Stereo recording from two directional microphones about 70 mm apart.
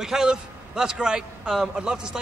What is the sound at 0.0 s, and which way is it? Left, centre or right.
A man's voice, centre.